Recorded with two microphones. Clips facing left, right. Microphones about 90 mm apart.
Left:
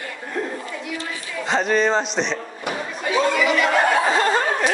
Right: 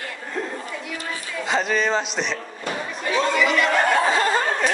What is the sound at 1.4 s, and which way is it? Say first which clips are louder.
Speech: left 3 dB; centre (ahead or behind).